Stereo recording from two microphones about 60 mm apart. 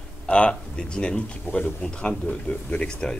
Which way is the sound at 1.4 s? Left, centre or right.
Left.